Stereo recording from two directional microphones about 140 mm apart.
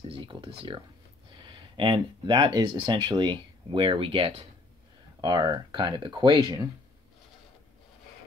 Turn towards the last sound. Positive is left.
turn(degrees=-25)  # may be behind; listen again after turning